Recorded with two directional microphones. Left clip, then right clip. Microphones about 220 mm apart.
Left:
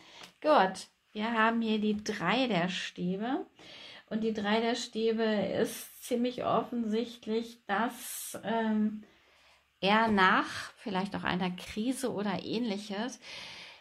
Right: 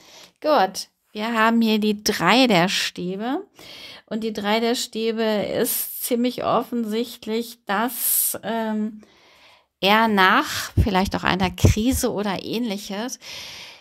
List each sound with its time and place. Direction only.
0.4 s speech: 50° right (ahead or behind)
9.8 s speech: 45° right (ahead or behind)